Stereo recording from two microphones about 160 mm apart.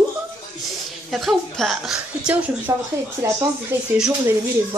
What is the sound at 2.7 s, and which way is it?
A woman's voice, 20° right (ahead or behind).